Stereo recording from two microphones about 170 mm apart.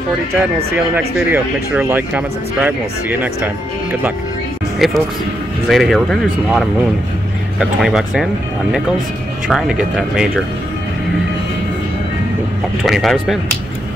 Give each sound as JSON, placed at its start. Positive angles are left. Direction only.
{"t": 0.4, "sound": "speech", "side_deg": -10}
{"t": 4.7, "sound": "speech", "side_deg": 0}
{"t": 9.5, "sound": "speech", "side_deg": 0}
{"t": 12.8, "sound": "speech", "side_deg": 0}